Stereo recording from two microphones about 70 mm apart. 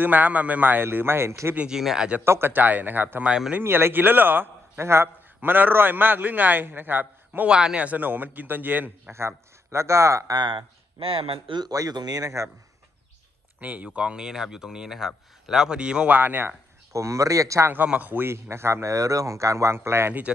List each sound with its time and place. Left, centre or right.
0.0 s a man's voice: right
1.7 s a man's voice: centre
2.2 s a man's voice: right
3.3 s a man's voice: centre
3.6 s a man's voice: right
4.7 s a man's voice: right
7.4 s a man's voice: centre
9.1 s speech: right
11.7 s speech: right
13.6 s a man's voice: right
16.2 s a man's voice: right
16.9 s speech: right
17.8 s a man's voice: right
18.2 s speech: right